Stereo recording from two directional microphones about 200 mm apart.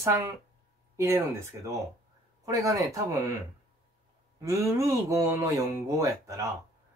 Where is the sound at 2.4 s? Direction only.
15° right (ahead or behind).